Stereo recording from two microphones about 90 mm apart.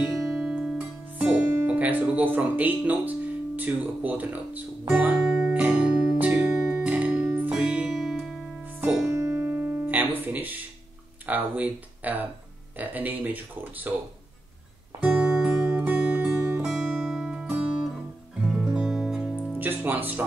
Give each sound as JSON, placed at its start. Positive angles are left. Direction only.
{"t": 0.1, "sound": "music", "side_deg": 0}
{"t": 1.1, "sound": "music", "side_deg": -20}
{"t": 1.5, "sound": "speech", "side_deg": -25}
{"t": 5.7, "sound": "music", "side_deg": -10}
{"t": 9.0, "sound": "music", "side_deg": -30}
{"t": 11.2, "sound": "speech", "side_deg": -20}
{"t": 15.0, "sound": "music", "side_deg": -10}
{"t": 16.3, "sound": "music", "side_deg": -30}
{"t": 16.6, "sound": "music", "side_deg": 0}
{"t": 17.5, "sound": "guitar", "side_deg": -15}
{"t": 18.4, "sound": "music", "side_deg": -5}
{"t": 19.6, "sound": "music", "side_deg": -20}